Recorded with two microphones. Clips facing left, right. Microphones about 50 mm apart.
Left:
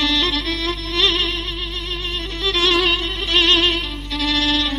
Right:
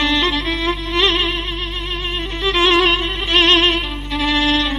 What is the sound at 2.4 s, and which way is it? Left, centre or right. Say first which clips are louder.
Music: right 4 dB; right.